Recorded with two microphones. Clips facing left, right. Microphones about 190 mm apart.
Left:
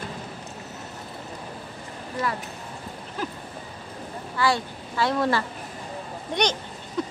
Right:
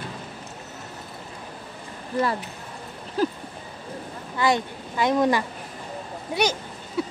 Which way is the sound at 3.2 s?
35° right (ahead or behind).